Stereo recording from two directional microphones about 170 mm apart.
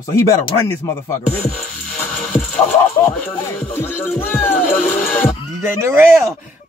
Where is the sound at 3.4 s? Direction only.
15° left (ahead or behind).